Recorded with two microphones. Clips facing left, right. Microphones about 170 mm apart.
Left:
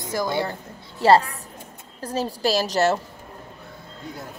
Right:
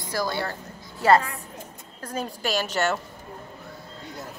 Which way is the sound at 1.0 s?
30° left (ahead or behind).